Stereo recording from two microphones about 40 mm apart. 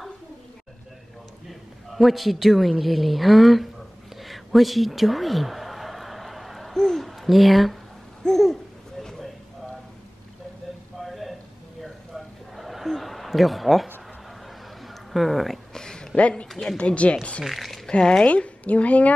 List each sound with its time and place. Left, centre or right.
1.5 s a woman's voice: centre
4.2 s a sound: centre
6.7 s babbling: centre
11.0 s a sound: centre
12.5 s a sound: centre
15.1 s speech: centre
15.7 s a sound: centre
16.2 s a woman's voice: left
16.4 s speech: centre
16.7 s speech: left
17.4 s speech: centre
17.8 s speech: centre
18.2 s a woman's voice: left